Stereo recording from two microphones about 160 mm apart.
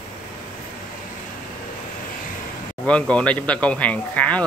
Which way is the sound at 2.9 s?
5° left (ahead or behind).